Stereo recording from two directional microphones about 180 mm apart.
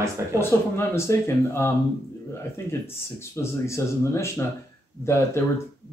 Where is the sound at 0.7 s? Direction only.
15° left (ahead or behind).